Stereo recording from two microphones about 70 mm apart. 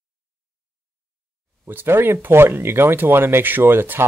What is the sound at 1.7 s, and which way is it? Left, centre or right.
Speech, right.